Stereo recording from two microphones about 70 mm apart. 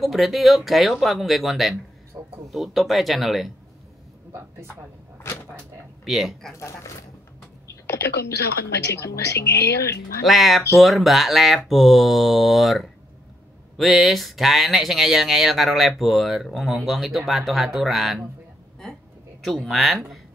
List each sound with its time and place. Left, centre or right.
0.0 s speech: centre
2.1 s a sound: right
2.5 s speech: centre
6.0 s speech: centre
6.6 s speech: left
7.8 s a sound: left
8.9 s speech: left
10.2 s speech: centre
19.4 s speech: centre